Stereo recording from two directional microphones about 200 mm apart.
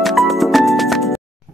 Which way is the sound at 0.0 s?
Centre (ahead or behind).